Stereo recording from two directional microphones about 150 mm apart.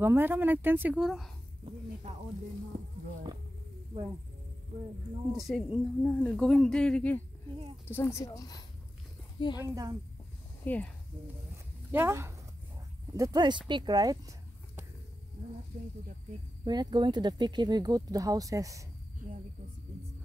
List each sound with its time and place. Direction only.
0.0 s speech: 15° right (ahead or behind)
5.3 s speech: centre (ahead or behind); by 8.6 s 25° left (ahead or behind)
9.6 s speech: 25° right (ahead or behind)
10.6 s speech: 10° left (ahead or behind)
11.5 s a sound: 15° right (ahead or behind)
13.1 s speech: 25° right (ahead or behind)
16.6 s speech: 30° right (ahead or behind)